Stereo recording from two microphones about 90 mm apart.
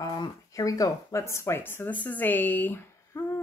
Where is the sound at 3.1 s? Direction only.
25° left (ahead or behind).